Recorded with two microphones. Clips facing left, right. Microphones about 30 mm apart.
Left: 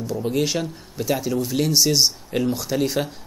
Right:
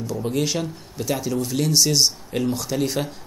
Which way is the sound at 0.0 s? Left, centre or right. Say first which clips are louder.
Left 1 dB; centre.